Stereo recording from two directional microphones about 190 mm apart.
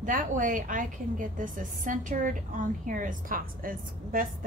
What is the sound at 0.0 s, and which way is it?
A woman's voice, 45° right (ahead or behind).